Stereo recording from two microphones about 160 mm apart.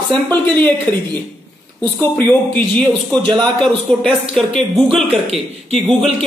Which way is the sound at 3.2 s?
30° right (ahead or behind).